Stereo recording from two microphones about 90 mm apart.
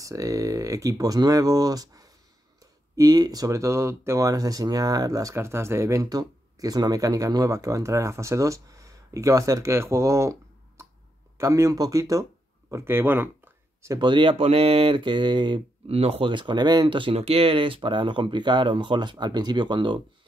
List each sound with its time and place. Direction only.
0.0 s speech: 40° right (ahead or behind)
6.0 s speech: 45° right (ahead or behind)
10.8 s clicking: 30° right (ahead or behind)
11.3 s speech: 35° right (ahead or behind)
12.7 s speech: 25° right (ahead or behind)
13.9 s speech: 65° right (ahead or behind)
16.8 s speech: 75° right (ahead or behind)